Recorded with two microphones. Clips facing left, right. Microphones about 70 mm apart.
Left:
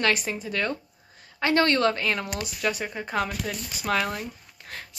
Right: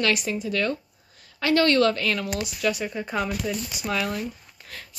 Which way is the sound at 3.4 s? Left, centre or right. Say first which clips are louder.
Right 1 dB; left.